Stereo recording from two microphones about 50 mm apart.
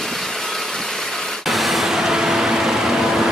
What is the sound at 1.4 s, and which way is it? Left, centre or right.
Vehicle, centre.